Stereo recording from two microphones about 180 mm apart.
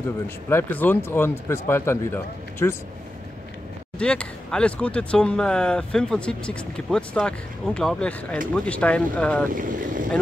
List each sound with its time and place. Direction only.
0.5 s speech: 10° left (ahead or behind)
4.0 s speech: 5° left (ahead or behind)
9.5 s speech: 50° right (ahead or behind)